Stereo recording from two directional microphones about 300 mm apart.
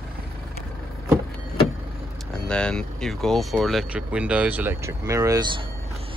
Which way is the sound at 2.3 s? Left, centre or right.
Centre.